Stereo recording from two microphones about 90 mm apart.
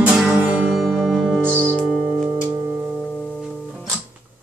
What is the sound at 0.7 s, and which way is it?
Music, centre (ahead or behind).